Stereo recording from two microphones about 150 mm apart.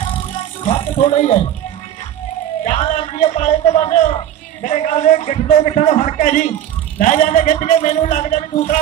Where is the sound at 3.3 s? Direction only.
50° left (ahead or behind).